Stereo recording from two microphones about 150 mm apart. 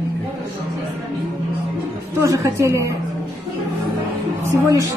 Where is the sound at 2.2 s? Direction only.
20° right (ahead or behind).